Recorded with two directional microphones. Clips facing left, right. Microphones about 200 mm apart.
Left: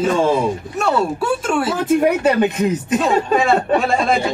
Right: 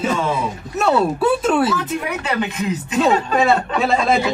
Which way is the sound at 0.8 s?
5° right (ahead or behind).